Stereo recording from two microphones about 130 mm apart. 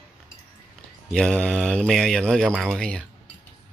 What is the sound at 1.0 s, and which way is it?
Speech, 5° left (ahead or behind).